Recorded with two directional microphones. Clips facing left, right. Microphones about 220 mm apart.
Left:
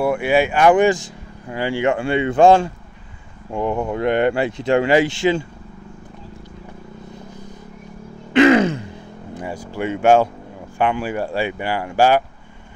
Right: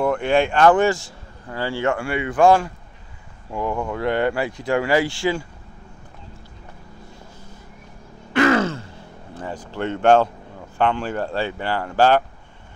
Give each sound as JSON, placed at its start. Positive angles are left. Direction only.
{"t": 0.0, "sound": "speech", "side_deg": 10}
{"t": 8.3, "sound": "grunt", "side_deg": 20}
{"t": 10.8, "sound": "speech", "side_deg": 10}